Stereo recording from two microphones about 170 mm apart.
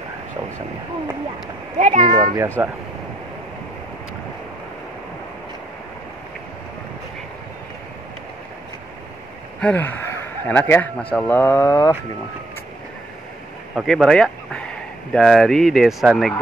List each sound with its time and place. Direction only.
1.8 s a child's voice: 50° right (ahead or behind)
2.3 s speech: 15° right (ahead or behind)
9.6 s a man's voice: 10° left (ahead or behind)
13.7 s speech: centre (ahead or behind)